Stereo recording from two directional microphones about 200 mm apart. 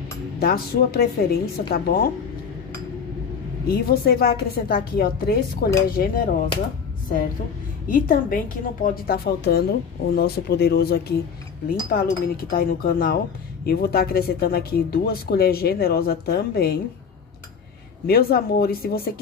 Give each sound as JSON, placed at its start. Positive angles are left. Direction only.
{"t": 0.4, "sound": "a woman's voice", "side_deg": 50}
{"t": 3.6, "sound": "a woman's voice", "side_deg": 50}
{"t": 7.9, "sound": "a woman's voice", "side_deg": 45}
{"t": 18.0, "sound": "a woman's voice", "side_deg": 50}